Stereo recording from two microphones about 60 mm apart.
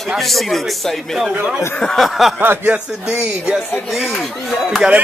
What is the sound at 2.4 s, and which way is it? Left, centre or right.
Speech, right.